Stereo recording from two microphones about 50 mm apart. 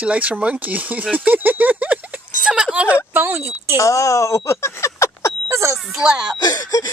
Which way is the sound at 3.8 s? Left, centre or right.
Left.